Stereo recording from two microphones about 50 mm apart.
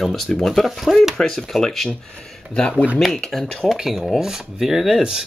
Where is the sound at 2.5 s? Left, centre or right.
Centre.